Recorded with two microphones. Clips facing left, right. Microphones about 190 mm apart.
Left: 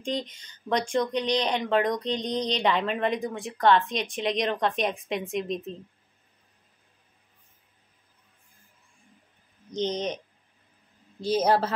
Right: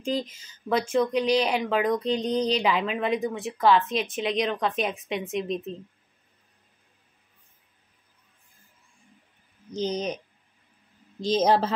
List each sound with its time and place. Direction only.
0.0 s speech: 5° right (ahead or behind)
9.7 s speech: 10° right (ahead or behind)
11.1 s a woman's voice: 90° right
11.4 s speech: 15° right (ahead or behind)